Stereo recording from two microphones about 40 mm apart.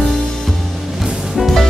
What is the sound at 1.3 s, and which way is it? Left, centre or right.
Music, centre.